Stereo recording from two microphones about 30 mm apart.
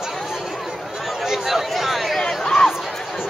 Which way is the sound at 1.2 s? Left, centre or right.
Centre.